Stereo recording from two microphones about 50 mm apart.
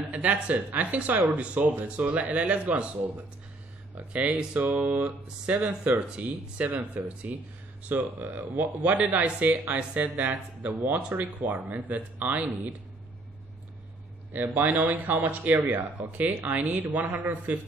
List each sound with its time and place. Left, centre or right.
0.2 s speech: right
14.3 s speech: right